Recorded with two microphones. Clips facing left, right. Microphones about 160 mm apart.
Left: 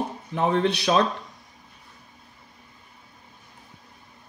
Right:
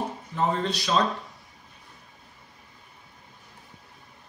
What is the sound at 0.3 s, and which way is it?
Speech, 65° left (ahead or behind).